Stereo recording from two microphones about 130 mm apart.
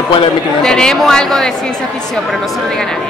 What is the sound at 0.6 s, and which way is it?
A woman's voice, 5° left (ahead or behind).